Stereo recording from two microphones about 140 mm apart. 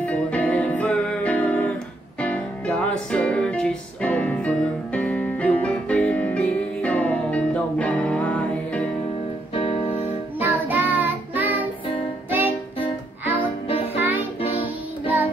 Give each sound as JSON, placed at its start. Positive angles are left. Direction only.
{"t": 0.0, "sound": "music", "side_deg": 10}
{"t": 9.5, "sound": "music", "side_deg": 40}
{"t": 10.4, "sound": "child singing", "side_deg": -10}
{"t": 12.3, "sound": "music", "side_deg": -10}